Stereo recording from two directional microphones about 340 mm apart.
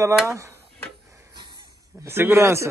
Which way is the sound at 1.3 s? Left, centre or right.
Centre.